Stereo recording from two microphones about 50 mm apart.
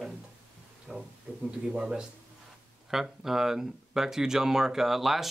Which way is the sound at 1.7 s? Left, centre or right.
Centre.